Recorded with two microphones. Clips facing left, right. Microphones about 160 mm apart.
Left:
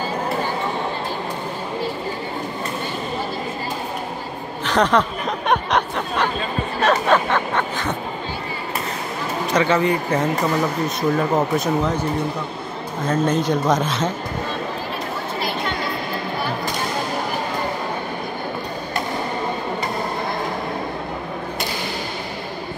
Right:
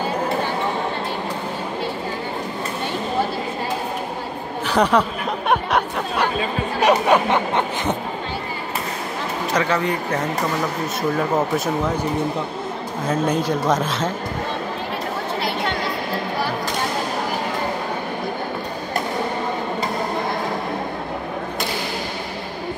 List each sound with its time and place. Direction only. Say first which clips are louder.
4.6 s speech: even; 10° right (ahead or behind)
5.5 s a sound: even; 5° right (ahead or behind)
6.8 s speech: right 2 dB; 15° right (ahead or behind)
9.5 s speech: left 3 dB; centre (ahead or behind)
13.1 s speech: left 1 dB; 5° right (ahead or behind)